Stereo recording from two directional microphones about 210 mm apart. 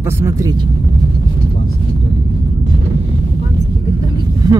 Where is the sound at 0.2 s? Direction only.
15° right (ahead or behind).